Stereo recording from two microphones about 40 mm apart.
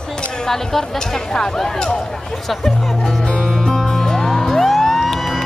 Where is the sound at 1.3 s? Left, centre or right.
Centre.